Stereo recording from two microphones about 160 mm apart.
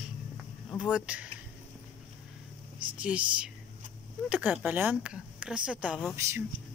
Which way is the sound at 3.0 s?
5° right (ahead or behind).